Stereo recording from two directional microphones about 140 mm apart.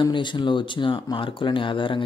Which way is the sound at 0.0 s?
35° left (ahead or behind).